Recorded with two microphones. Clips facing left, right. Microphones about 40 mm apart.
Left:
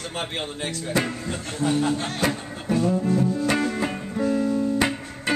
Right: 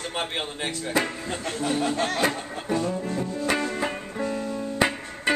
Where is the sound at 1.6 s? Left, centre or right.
Right.